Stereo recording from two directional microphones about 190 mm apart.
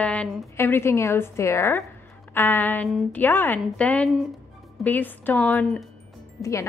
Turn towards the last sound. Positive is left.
turn(degrees=15)  # may be behind; listen again after turning